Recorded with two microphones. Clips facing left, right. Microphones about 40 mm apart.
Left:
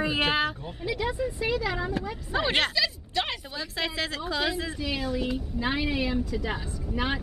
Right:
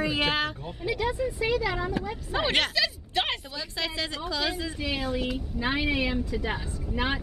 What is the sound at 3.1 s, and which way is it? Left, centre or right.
Speech, right.